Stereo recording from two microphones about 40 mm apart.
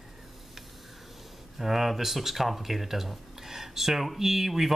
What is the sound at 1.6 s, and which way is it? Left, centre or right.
Speech, centre.